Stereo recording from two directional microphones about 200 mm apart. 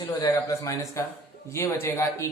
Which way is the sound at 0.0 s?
15° left (ahead or behind).